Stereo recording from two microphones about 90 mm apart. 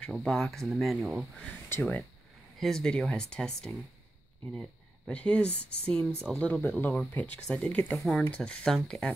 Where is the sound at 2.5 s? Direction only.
5° left (ahead or behind).